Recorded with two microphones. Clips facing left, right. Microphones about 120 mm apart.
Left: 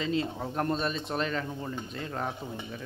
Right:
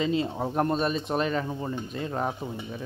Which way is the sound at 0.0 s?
15° right (ahead or behind).